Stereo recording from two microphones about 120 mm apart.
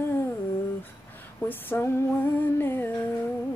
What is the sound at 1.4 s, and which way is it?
Female singing, 20° left (ahead or behind).